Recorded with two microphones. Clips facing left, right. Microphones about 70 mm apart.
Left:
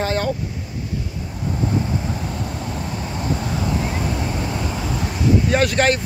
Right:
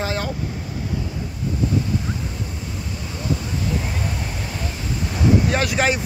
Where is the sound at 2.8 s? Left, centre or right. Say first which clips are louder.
Left 4 dB; left.